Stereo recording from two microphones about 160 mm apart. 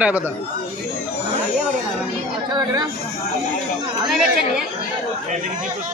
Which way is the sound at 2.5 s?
25° right (ahead or behind).